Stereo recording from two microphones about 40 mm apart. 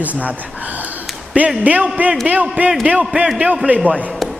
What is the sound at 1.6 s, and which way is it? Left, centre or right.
Speech, right.